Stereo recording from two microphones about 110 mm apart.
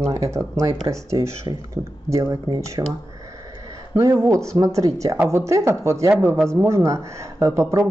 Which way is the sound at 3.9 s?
30° right (ahead or behind).